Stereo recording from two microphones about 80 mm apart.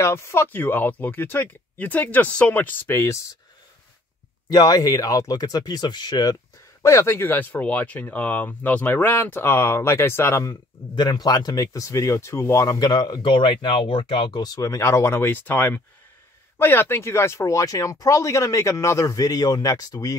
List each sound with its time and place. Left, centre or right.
0.0 s speech: left
4.5 s speech: left
6.8 s speech: left
10.5 s speech: left
12.7 s speech: left
13.2 s speech: left
14.4 s speech: left